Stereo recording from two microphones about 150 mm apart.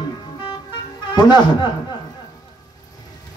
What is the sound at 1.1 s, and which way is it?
Speech, 30° left (ahead or behind).